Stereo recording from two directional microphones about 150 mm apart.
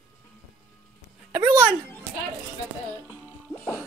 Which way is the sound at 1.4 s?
25° right (ahead or behind).